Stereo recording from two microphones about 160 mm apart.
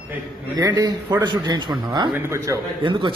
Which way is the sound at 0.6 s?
20° right (ahead or behind).